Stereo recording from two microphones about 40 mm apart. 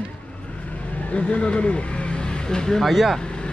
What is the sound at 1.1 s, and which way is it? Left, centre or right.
Speech, left.